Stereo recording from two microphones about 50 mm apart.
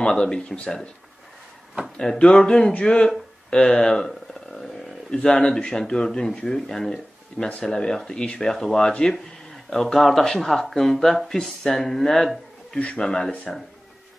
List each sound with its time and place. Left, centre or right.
0.0 s speech: centre
2.0 s speech: centre
3.9 s a sound: centre
5.1 s speech: centre
12.7 s speech: centre